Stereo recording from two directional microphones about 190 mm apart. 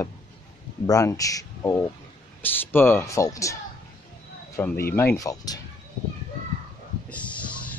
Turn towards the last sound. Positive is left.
turn(degrees=5)  # may be behind; listen again after turning